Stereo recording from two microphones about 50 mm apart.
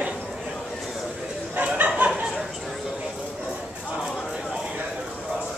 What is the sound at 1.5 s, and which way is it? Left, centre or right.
Bow-wow, right.